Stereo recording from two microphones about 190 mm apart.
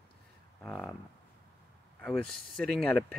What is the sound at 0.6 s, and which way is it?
Speech, 5° left (ahead or behind).